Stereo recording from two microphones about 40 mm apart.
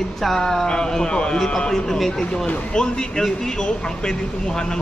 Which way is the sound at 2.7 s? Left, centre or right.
Left.